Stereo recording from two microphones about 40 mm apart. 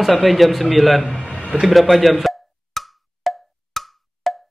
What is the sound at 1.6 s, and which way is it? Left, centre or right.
Percussion, centre.